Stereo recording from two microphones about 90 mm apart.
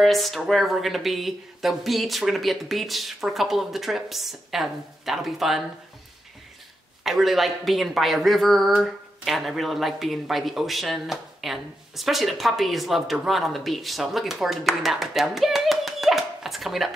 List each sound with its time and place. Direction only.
0.0 s speech: centre (ahead or behind)
7.0 s speech: 5° right (ahead or behind)